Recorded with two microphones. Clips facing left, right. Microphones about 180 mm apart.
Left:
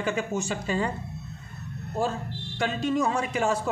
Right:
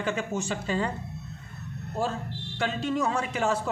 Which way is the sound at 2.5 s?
15° left (ahead or behind).